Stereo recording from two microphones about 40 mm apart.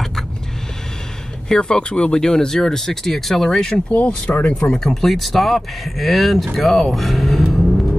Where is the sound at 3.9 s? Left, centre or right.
Left.